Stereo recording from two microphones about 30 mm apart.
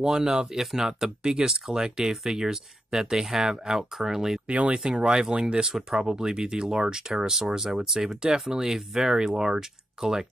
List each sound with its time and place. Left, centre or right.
0.0 s speech: right
0.5 s speech: centre
4.5 s speech: right
4.7 s speech: right
5.7 s speech: centre
5.9 s speech: right